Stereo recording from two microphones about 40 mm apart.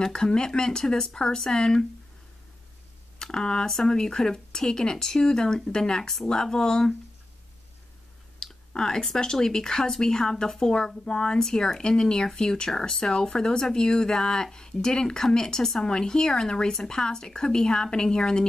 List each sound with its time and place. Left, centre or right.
0.0 s speech: centre
3.2 s speech: centre
8.4 s clicking: centre
8.7 s speech: centre